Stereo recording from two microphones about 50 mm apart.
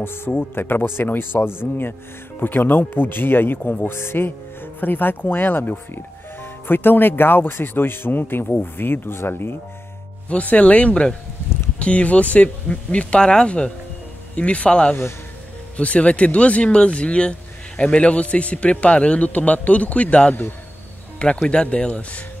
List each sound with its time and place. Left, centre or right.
0.0 s speech: left
4.7 s speech: left
10.3 s a man's voice: left
21.5 s a man's voice: left